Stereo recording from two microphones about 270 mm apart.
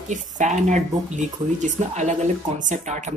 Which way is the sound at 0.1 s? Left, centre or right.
Right.